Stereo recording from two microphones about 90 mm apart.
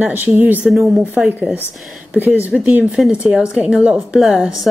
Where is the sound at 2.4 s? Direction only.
15° right (ahead or behind).